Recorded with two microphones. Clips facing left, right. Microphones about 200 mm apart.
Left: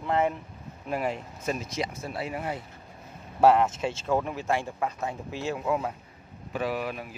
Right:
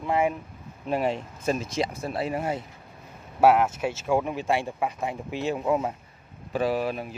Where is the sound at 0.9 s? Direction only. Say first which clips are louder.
Right 4 dB; 25° right (ahead or behind).